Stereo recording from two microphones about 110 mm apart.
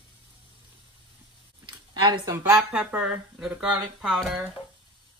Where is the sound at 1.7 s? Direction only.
45° right (ahead or behind).